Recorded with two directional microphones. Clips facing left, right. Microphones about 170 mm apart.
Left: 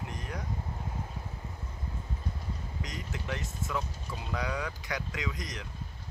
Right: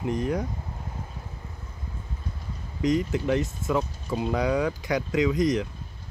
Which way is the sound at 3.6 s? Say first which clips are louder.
Right 9 dB; 45° right (ahead or behind).